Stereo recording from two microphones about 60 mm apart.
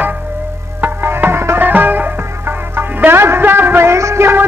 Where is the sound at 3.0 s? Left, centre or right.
Right.